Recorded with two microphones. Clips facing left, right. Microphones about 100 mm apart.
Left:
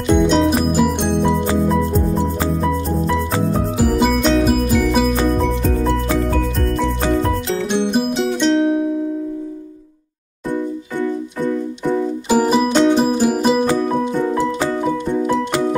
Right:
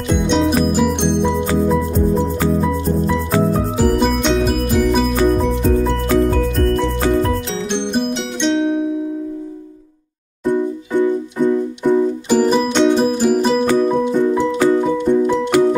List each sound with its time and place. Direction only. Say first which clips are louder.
0.1 s music: left 2 dB; centre (ahead or behind)
3.8 s music: even; centre (ahead or behind)
7.2 s music: even; 5° left (ahead or behind)
10.5 s music: right 4 dB; 15° right (ahead or behind)
12.3 s music: left 2 dB; 5° left (ahead or behind)